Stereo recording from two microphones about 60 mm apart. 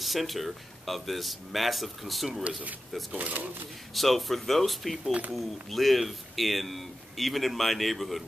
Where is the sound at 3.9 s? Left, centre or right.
Centre.